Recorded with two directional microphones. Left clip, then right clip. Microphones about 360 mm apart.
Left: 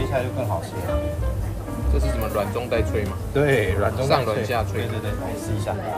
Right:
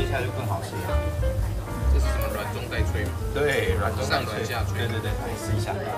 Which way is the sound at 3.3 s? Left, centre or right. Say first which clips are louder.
Left 4 dB; centre.